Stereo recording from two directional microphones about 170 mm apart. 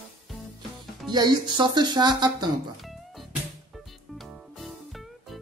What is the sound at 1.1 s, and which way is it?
Speech, 25° right (ahead or behind).